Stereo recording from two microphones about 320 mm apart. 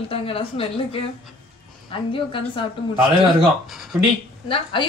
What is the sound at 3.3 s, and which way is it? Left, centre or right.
Speech, centre.